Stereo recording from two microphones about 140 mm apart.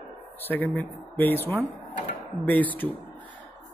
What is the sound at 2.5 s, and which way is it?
Speech, 10° left (ahead or behind).